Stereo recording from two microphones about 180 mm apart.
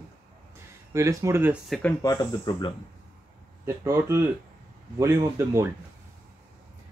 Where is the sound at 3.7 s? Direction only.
15° right (ahead or behind).